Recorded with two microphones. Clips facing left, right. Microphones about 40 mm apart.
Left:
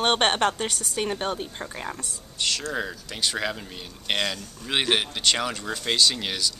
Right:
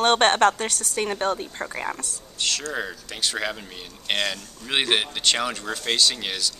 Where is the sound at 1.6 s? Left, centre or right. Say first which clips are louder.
Right 4 dB; centre.